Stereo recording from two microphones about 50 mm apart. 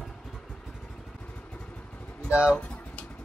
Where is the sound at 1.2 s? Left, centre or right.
Left.